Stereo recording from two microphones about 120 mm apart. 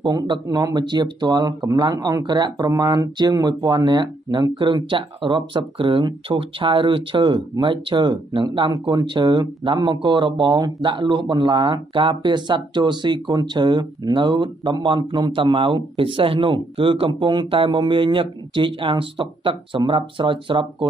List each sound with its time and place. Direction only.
0.0 s speech: 30° right (ahead or behind)